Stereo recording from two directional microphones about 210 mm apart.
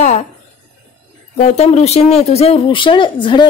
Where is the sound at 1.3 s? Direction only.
30° left (ahead or behind).